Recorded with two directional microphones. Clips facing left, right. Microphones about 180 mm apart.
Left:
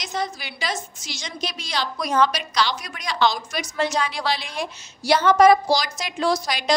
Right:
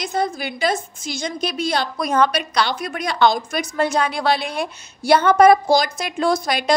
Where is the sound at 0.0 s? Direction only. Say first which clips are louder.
Right 6 dB; 55° right (ahead or behind).